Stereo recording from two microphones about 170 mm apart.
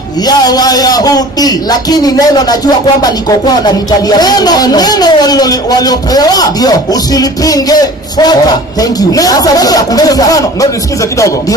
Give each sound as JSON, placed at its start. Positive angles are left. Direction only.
{"t": 0.2, "sound": "a man's voice", "side_deg": 20}